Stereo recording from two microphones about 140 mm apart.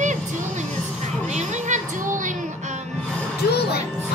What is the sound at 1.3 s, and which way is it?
Music, 55° right (ahead or behind).